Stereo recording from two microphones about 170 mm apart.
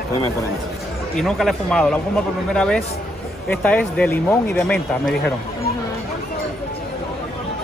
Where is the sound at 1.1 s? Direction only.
Centre (ahead or behind).